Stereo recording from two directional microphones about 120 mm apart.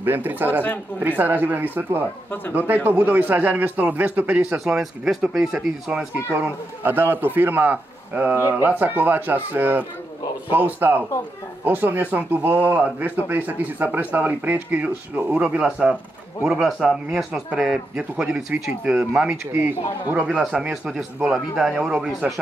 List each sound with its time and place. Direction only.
0.0 s a man's voice: 15° right (ahead or behind)
6.3 s a man's voice: 15° right (ahead or behind)